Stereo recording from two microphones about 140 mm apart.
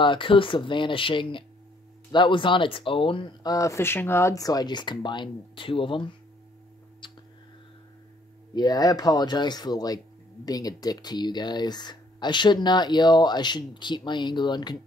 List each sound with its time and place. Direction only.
0.0 s speech: 35° left (ahead or behind)
7.0 s a sound: 35° left (ahead or behind)
8.5 s speech: 30° left (ahead or behind)